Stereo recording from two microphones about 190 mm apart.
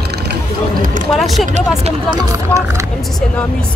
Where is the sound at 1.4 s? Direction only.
35° right (ahead or behind).